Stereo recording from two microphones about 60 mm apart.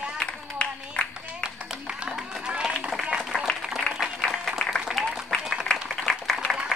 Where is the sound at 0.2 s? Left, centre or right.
Centre.